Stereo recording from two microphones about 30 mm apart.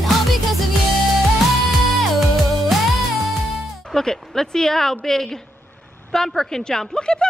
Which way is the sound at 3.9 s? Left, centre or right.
Centre.